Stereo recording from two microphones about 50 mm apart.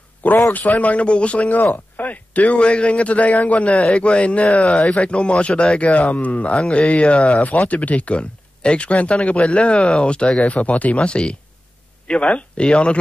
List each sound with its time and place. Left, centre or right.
0.5 s speech: left
4.6 s speech: centre